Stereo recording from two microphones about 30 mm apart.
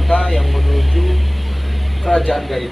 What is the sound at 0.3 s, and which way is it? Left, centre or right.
Vehicle, centre.